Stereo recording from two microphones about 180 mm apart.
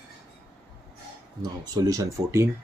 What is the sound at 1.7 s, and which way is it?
Speech, 20° right (ahead or behind).